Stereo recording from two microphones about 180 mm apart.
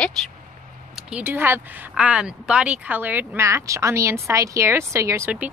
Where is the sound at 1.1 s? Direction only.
10° right (ahead or behind).